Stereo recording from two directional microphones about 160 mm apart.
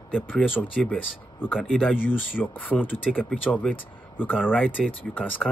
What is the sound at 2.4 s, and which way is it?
Speech, 10° left (ahead or behind).